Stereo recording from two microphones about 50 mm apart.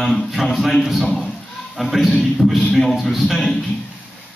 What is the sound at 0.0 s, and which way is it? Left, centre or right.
A man's voice, centre.